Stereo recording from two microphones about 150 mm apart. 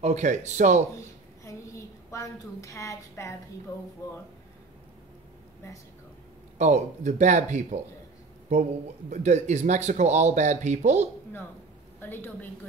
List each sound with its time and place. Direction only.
0.0 s speech: 50° right (ahead or behind)
1.4 s a sound: 20° left (ahead or behind)
6.6 s speech: 50° right (ahead or behind)
9.1 s speech: 50° right (ahead or behind)
12.0 s a woman's voice: 15° left (ahead or behind)